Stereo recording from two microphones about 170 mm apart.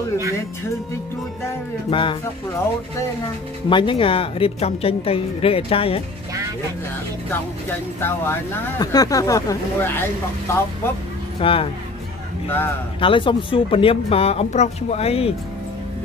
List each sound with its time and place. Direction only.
1.9 s speech: 30° left (ahead or behind)
3.6 s a woman's voice: 30° left (ahead or behind)
8.0 s speech: 20° left (ahead or behind)
11.3 s a woman's voice: 35° left (ahead or behind)
13.0 s a woman's voice: 30° left (ahead or behind)